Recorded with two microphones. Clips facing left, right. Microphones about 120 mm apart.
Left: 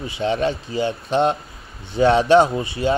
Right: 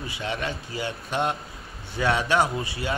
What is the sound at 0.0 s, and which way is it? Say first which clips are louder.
Speech: left 9 dB; 25° left (ahead or behind).